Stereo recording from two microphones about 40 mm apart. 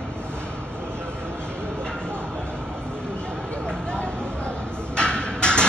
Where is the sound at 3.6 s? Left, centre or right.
Left.